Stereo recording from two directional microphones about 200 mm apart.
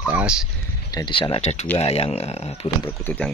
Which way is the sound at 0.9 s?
20° left (ahead or behind).